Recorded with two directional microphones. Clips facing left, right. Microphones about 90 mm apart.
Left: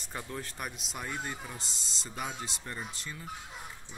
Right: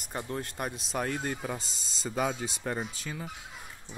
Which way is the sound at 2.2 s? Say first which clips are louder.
Right 7 dB; 90° right.